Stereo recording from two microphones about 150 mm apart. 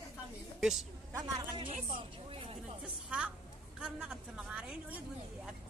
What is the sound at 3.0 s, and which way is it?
A woman's voice, 5° right (ahead or behind).